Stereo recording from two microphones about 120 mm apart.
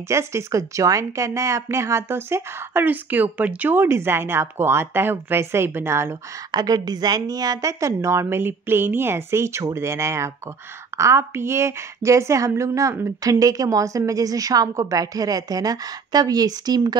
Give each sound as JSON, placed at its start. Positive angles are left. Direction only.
{"t": 0.1, "sound": "speech", "side_deg": -25}
{"t": 6.5, "sound": "a woman's voice", "side_deg": -35}